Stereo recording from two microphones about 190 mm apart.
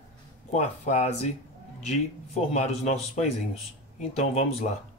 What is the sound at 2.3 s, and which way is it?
A man's voice, 35° left (ahead or behind).